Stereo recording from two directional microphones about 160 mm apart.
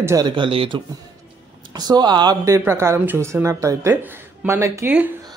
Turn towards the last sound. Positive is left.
turn(degrees=-10)  # may be behind; listen again after turning